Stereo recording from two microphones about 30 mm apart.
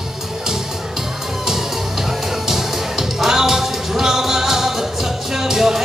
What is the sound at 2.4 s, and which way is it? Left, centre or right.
Music, centre.